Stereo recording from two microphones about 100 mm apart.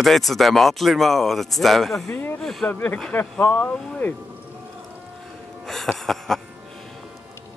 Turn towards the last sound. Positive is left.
turn(degrees=5)  # may be behind; listen again after turning